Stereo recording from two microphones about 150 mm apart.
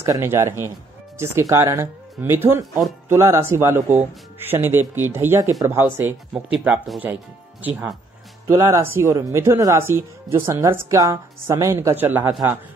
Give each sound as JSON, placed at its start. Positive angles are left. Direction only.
{"t": 0.0, "sound": "speech", "side_deg": -15}
{"t": 8.5, "sound": "speech", "side_deg": -20}